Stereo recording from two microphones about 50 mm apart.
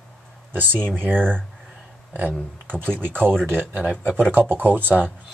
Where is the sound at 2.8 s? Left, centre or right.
Right.